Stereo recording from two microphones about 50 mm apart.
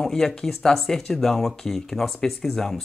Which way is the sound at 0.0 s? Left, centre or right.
Centre.